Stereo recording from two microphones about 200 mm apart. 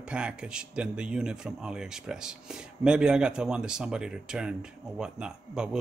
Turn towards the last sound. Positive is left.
turn(degrees=-5)  # may be behind; listen again after turning